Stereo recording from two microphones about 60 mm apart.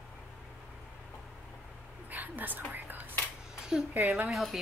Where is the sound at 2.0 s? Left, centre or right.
Right.